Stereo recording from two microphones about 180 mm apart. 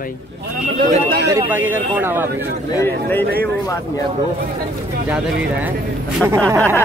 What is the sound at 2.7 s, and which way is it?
Speech, 10° left (ahead or behind).